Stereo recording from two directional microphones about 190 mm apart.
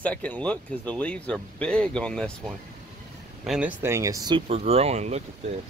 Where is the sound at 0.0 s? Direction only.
5° left (ahead or behind); by 5.2 s 35° right (ahead or behind).